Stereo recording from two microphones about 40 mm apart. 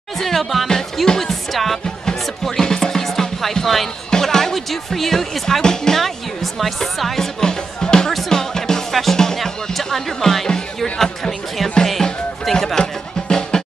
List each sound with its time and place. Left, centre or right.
0.2 s speech: centre
2.4 s music: centre
4.1 s speech: centre
7.2 s music: centre
12.8 s music: left